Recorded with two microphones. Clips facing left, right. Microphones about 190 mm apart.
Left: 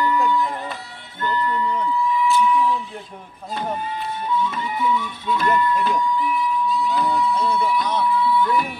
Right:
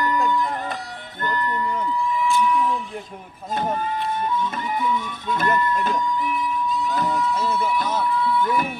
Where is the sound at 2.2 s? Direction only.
50° right (ahead or behind).